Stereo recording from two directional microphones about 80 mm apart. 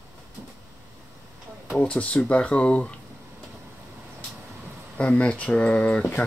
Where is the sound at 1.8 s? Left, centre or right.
Centre.